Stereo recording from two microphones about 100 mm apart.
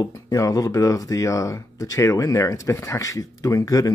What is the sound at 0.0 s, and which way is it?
Speech, 35° left (ahead or behind).